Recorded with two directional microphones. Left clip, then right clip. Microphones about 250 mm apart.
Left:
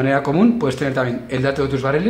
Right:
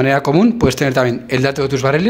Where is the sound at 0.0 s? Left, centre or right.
Right.